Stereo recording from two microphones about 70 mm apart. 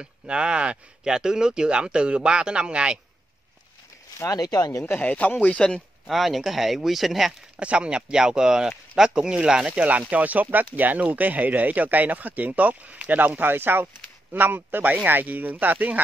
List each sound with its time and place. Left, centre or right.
0.0 s speech: centre
4.3 s speech: left
5.0 s speech: left
5.7 s speech: centre
7.5 s speech: centre